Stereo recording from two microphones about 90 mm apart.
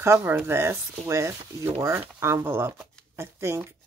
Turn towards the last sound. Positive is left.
turn(degrees=-30)  # may be behind; listen again after turning